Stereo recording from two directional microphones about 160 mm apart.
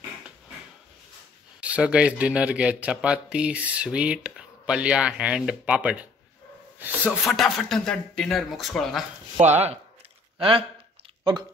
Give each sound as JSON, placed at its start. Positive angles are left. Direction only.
{"t": 1.6, "sound": "speech", "side_deg": -5}
{"t": 9.4, "sound": "speech", "side_deg": -45}